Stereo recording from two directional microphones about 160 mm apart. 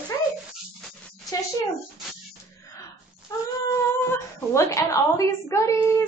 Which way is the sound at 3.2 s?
20° left (ahead or behind).